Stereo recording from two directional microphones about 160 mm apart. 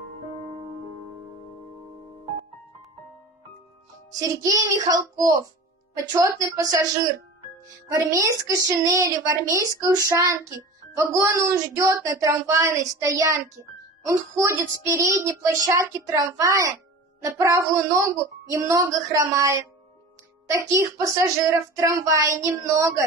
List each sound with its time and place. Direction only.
4.2 s speech: 20° right (ahead or behind)
7.9 s speech: 20° right (ahead or behind)